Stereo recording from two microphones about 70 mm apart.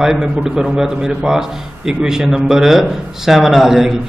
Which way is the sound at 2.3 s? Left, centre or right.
Centre.